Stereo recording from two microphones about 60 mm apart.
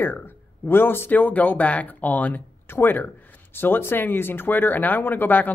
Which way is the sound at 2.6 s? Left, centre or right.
Left.